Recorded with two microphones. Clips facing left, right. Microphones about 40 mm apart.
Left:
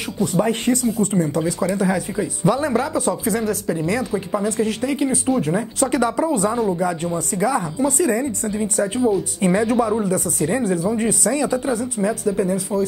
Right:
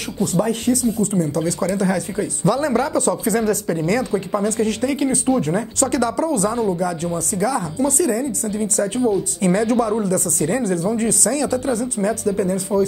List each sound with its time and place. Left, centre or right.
0.2 s a woman's voice: centre
1.4 s a woman's voice: centre